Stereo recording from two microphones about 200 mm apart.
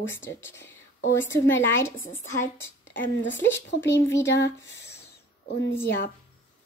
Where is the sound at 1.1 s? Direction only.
10° left (ahead or behind).